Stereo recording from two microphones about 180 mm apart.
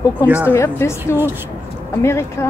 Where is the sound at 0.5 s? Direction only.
15° left (ahead or behind).